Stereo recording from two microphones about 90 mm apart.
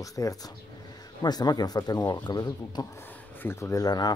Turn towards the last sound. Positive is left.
turn(degrees=45)  # may be behind; listen again after turning